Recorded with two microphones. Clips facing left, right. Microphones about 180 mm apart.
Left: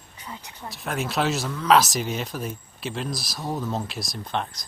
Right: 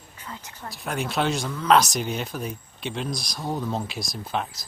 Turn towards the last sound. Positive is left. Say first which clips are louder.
# even
turn(degrees=-5)  # may be behind; listen again after turning